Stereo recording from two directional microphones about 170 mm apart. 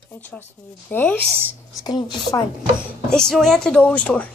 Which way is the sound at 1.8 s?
25° left (ahead or behind).